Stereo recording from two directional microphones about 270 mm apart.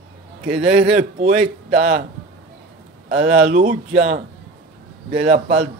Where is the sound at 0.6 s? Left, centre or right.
Centre.